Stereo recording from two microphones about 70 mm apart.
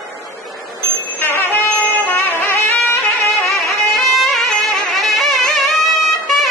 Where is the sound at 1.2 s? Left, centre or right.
Left.